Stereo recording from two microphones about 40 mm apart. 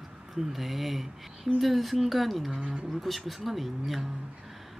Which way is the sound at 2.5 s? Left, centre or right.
Right.